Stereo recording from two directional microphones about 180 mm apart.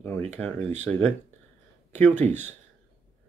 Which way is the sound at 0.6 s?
40° right (ahead or behind).